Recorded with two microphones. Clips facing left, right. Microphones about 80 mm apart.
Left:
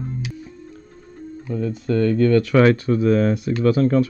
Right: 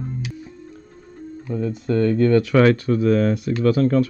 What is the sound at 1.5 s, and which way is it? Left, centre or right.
Speech, right.